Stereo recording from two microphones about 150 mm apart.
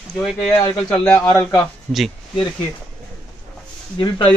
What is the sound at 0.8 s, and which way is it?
Speech, 10° left (ahead or behind).